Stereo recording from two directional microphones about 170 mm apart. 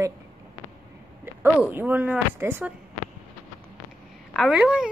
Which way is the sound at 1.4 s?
5° right (ahead or behind).